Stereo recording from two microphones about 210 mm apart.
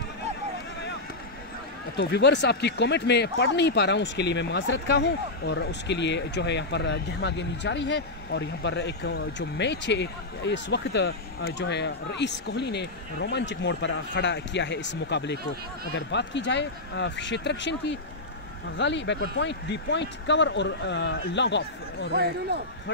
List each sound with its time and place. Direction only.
2.0 s speech: 55° left (ahead or behind)
22.1 s speech: 50° right (ahead or behind)